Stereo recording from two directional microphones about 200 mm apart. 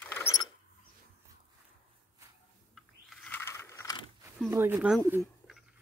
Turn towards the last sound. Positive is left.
turn(degrees=-10)  # may be behind; listen again after turning